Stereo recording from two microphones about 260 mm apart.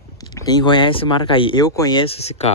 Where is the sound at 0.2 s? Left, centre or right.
Centre.